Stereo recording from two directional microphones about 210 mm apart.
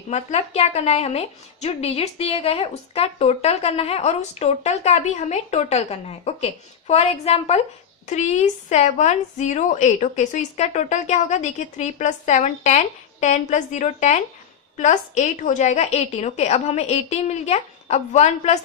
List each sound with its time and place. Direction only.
0.1 s a woman's voice: 30° left (ahead or behind)